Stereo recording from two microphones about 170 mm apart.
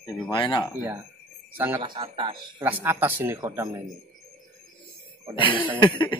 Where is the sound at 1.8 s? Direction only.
25° right (ahead or behind).